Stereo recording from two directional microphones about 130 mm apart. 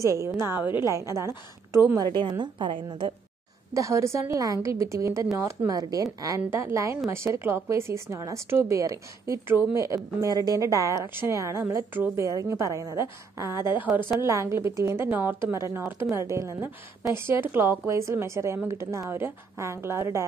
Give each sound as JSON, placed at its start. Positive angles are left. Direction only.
{"t": 0.0, "sound": "a woman's voice", "side_deg": -25}
{"t": 2.2, "sound": "a woman's voice", "side_deg": -35}
{"t": 3.7, "sound": "a woman's voice", "side_deg": -25}